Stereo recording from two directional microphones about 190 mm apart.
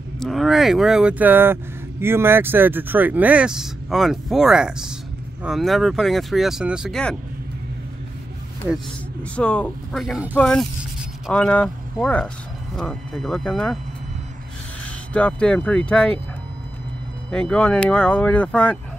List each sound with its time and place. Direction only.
0.2 s speech: centre (ahead or behind)
9.2 s speech: 5° left (ahead or behind)
15.1 s speech: 5° left (ahead or behind)
17.3 s speech: 5° left (ahead or behind)